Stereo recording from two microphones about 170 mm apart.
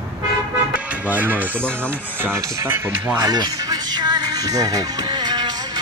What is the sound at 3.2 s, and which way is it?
Music, 25° right (ahead or behind).